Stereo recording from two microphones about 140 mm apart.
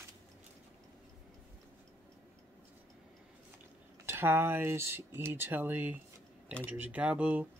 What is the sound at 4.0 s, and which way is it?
Speech, 15° right (ahead or behind).